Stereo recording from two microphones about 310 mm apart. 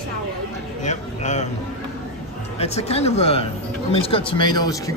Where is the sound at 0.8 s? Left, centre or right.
Left.